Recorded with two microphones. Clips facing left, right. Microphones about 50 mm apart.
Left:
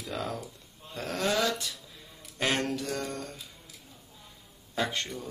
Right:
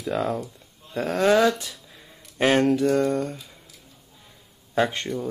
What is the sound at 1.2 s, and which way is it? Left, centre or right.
Speech, right.